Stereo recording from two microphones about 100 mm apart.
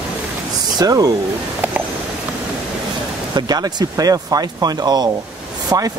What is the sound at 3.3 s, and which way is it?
Speech, 45° right (ahead or behind).